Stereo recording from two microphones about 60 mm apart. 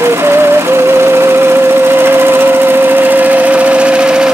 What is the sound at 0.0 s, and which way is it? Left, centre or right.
Music, right.